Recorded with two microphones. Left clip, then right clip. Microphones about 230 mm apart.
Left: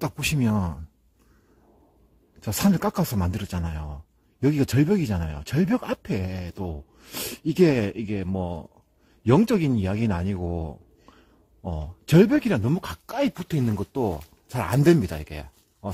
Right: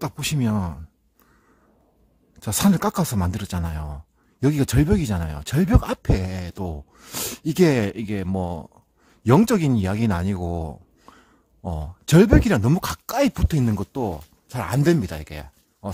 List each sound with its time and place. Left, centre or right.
0.0 s speech: centre
2.4 s speech: centre
14.0 s speech: centre